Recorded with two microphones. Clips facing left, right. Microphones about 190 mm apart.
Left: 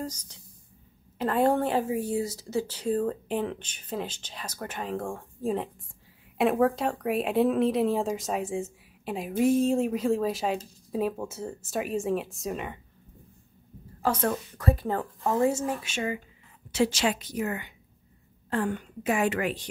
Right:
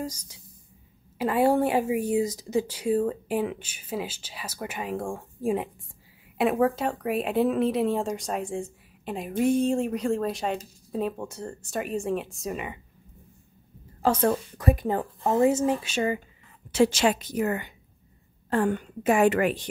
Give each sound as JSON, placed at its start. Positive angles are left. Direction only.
{"t": 0.0, "sound": "a woman's voice", "side_deg": -10}
{"t": 6.3, "sound": "speech", "side_deg": 0}
{"t": 14.0, "sound": "speech", "side_deg": -25}
{"t": 15.8, "sound": "speech", "side_deg": -35}
{"t": 16.7, "sound": "a woman's voice", "side_deg": -50}